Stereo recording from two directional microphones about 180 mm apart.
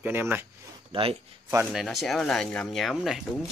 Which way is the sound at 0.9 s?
30° right (ahead or behind).